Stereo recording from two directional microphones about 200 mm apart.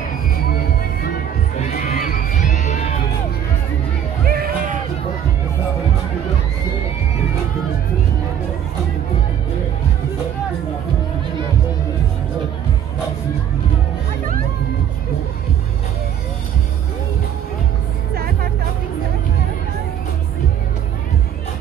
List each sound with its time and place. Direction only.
1.6 s crowd: 45° left (ahead or behind)
4.3 s music: 50° right (ahead or behind)
18.1 s music: 50° right (ahead or behind)